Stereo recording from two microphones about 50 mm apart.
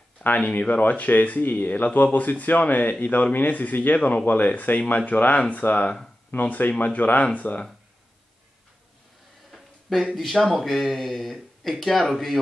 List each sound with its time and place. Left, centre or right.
0.2 s speech: left
9.5 s a sound: centre
10.1 s speech: centre